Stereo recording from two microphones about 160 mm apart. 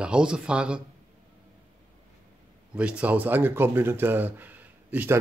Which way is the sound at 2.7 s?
10° right (ahead or behind).